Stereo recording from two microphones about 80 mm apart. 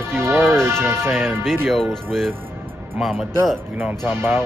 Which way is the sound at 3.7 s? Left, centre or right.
Right.